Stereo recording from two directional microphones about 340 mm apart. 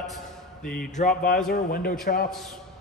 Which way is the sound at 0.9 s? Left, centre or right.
Left.